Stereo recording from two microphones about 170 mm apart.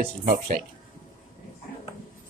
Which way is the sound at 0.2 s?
60° right (ahead or behind).